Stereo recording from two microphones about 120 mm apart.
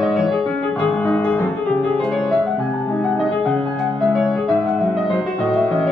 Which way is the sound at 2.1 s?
Centre (ahead or behind).